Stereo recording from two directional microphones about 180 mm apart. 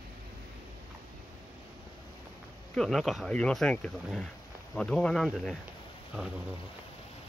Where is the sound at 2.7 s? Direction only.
Centre (ahead or behind).